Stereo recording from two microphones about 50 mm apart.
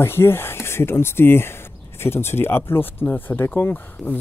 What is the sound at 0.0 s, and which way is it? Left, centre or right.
Speech, left.